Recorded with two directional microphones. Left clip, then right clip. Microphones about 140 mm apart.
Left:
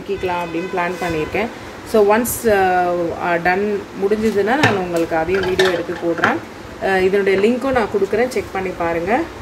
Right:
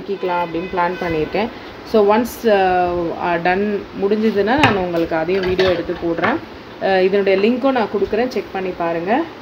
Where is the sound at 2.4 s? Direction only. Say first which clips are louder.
Even; 55° right (ahead or behind).